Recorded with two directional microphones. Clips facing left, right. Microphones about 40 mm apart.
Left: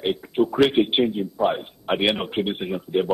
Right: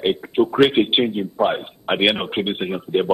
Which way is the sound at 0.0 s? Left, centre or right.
Right.